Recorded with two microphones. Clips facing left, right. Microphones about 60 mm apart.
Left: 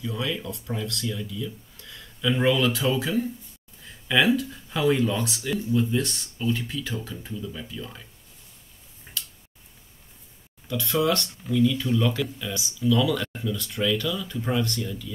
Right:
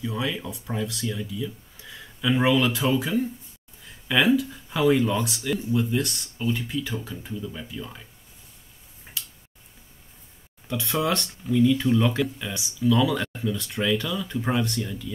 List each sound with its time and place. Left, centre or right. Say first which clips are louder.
0.0 s speech: right 1 dB; centre
6.3 s speech: right 1 dB; centre
9.1 s tick-tock: left 1 dB; centre
10.7 s speech: left 1 dB; centre